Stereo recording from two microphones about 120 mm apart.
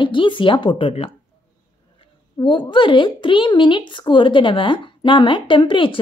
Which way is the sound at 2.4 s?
45° left (ahead or behind).